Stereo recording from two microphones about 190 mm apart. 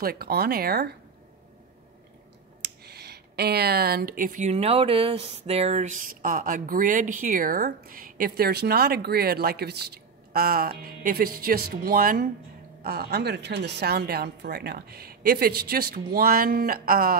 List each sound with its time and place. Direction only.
0.0 s speech: 55° right (ahead or behind)
2.6 s a woman's voice: 60° right (ahead or behind)